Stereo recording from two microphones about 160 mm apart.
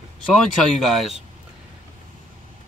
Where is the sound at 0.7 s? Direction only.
Centre (ahead or behind).